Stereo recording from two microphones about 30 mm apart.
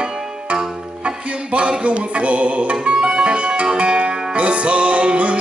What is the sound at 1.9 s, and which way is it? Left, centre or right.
Speech, right.